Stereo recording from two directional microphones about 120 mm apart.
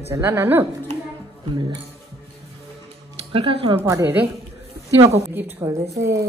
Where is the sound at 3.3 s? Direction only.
50° right (ahead or behind).